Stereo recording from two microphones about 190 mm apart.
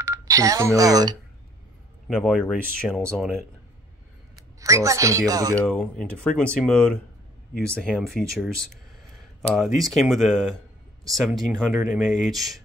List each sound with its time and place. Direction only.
0.0 s speech: 15° right (ahead or behind)
2.0 s speech: centre (ahead or behind)
4.6 s speech: 15° right (ahead or behind)
5.6 s speech: 5° left (ahead or behind)